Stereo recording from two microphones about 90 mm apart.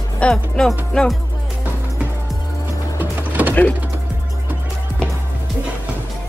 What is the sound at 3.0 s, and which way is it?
Music, 20° right (ahead or behind).